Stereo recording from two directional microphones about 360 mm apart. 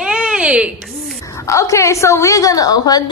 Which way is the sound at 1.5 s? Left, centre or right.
Centre.